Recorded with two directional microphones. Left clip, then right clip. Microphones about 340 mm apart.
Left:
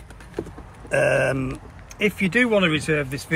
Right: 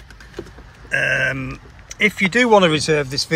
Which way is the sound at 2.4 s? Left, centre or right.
Centre.